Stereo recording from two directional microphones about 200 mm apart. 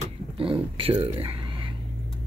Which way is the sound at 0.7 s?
25° right (ahead or behind).